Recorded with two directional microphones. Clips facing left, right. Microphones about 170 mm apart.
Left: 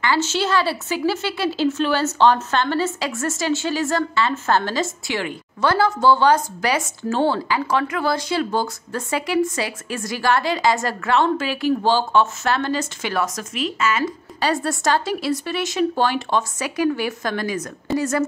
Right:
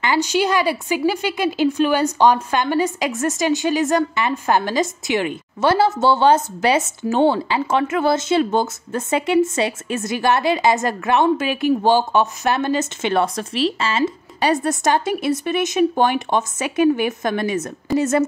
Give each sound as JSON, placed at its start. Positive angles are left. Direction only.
{"t": 0.0, "sound": "a woman's voice", "side_deg": -15}